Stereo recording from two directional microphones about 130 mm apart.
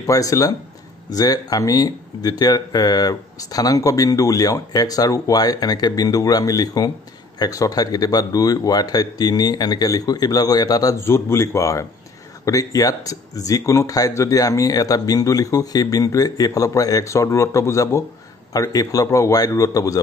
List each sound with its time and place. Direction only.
0.0 s speech: 25° left (ahead or behind)